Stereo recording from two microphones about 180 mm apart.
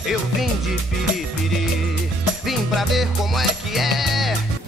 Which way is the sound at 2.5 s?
Centre (ahead or behind).